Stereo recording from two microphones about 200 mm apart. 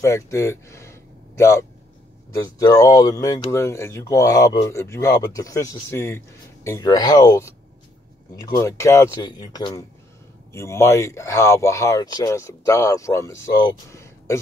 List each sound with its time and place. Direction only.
0.0 s speech: 15° left (ahead or behind)